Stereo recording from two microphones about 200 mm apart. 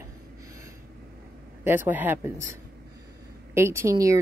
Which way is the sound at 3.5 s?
15° right (ahead or behind).